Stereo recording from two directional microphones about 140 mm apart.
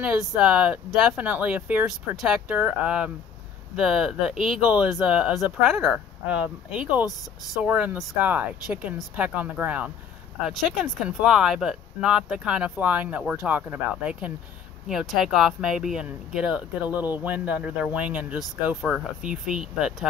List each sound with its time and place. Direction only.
0.0 s speech: 5° right (ahead or behind)